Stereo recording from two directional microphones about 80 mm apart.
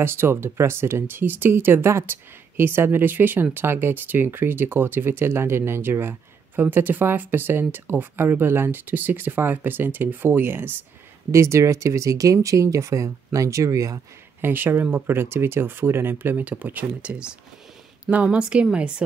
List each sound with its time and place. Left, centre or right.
0.0 s speech: right
11.3 s speech: right
14.4 s speech: right